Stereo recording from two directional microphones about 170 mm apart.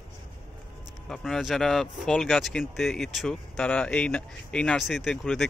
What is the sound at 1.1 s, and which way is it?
Speech, centre (ahead or behind).